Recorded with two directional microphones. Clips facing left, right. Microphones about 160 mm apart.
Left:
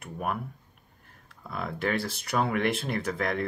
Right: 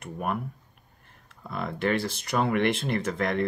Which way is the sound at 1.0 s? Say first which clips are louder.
Right 2 dB; centre (ahead or behind).